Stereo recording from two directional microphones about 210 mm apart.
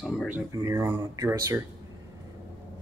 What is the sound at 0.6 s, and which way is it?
Speech, 10° right (ahead or behind).